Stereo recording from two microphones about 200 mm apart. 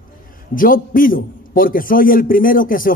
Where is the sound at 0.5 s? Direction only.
45° left (ahead or behind).